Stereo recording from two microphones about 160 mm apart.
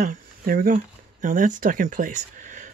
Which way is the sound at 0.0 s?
60° right (ahead or behind).